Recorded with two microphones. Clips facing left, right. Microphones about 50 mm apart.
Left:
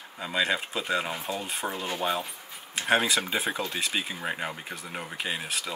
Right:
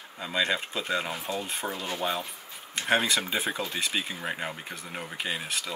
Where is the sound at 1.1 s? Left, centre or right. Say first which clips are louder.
Even; centre.